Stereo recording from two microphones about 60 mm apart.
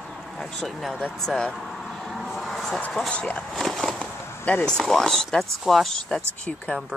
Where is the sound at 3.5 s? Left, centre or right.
Centre.